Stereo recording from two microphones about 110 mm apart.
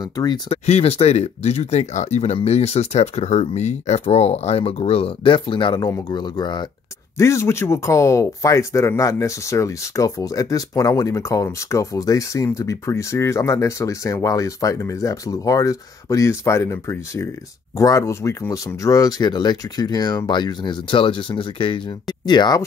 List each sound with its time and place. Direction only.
0.0 s speech: 35° left (ahead or behind)
0.5 s speech: 65° left (ahead or behind); by 2.3 s 90° left
2.4 s speech: 75° left (ahead or behind); by 5.8 s 50° left (ahead or behind)
5.8 s speech: 35° left (ahead or behind)
7.2 s speech: 25° left (ahead or behind); by 21.9 s 55° left (ahead or behind)
22.2 s speech: 40° left (ahead or behind)